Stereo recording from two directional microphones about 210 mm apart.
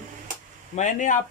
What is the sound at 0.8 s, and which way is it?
Speech, 35° left (ahead or behind).